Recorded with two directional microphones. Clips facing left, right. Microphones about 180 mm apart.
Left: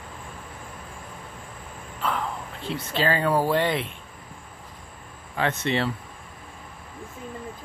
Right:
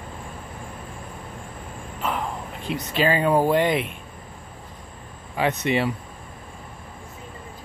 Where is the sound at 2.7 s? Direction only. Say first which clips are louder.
Right 3 dB; 15° right (ahead or behind).